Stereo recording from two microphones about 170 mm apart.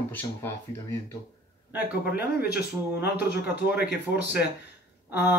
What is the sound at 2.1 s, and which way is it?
Speech, 70° left (ahead or behind).